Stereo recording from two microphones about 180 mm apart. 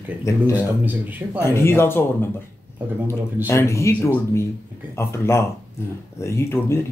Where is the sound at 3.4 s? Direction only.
15° left (ahead or behind).